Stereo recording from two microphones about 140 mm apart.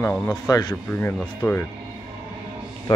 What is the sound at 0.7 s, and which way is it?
Speech, 15° left (ahead or behind).